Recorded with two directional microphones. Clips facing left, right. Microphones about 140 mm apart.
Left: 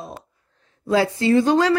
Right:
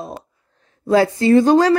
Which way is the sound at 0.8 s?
45° right (ahead or behind).